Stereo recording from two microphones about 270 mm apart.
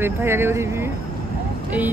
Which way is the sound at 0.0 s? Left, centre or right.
Centre.